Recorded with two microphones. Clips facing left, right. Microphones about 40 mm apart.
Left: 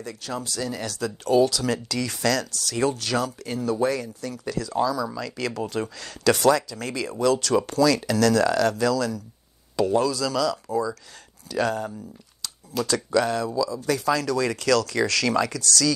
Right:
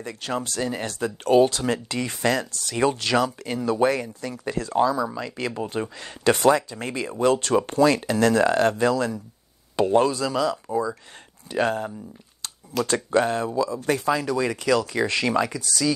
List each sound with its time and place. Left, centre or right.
0.0 s speech: right
2.9 s speech: right
14.1 s speech: right